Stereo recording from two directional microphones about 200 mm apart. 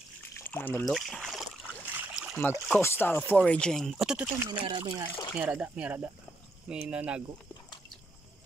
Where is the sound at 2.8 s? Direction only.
10° left (ahead or behind); by 4.5 s 5° right (ahead or behind).